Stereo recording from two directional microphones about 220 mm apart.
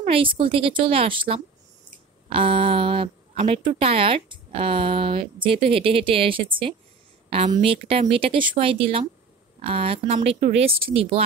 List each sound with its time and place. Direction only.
0.0 s speech: 25° right (ahead or behind)